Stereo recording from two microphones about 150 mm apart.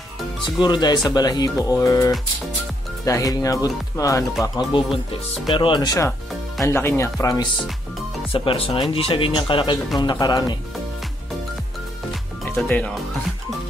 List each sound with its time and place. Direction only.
0.6 s speech: 30° left (ahead or behind)
8.3 s speech: 35° left (ahead or behind)
12.5 s speech: 10° left (ahead or behind)